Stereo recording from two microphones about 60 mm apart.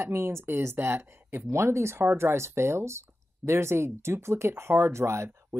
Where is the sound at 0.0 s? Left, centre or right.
Right.